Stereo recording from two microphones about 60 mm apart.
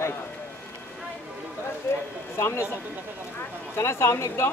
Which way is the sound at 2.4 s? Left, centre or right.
Left.